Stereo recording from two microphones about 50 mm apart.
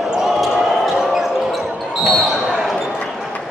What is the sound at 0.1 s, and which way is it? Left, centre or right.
Basketball bounce, centre.